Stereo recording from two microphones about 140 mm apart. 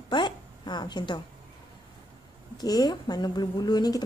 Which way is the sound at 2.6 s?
30° left (ahead or behind).